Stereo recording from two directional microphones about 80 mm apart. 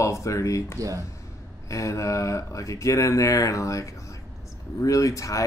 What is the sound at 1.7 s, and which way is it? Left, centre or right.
Speech, left.